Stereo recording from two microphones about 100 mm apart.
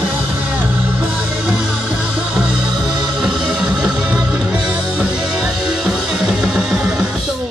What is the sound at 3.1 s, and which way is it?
Music, 5° right (ahead or behind).